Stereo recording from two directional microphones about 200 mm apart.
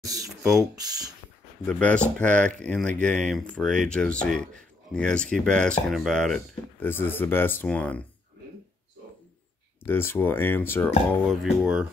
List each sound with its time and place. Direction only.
0.0 s ratchet: 15° right (ahead or behind)
1.7 s speech: 5° left (ahead or behind)
9.8 s speech: 10° left (ahead or behind)
11.2 s speech: centre (ahead or behind)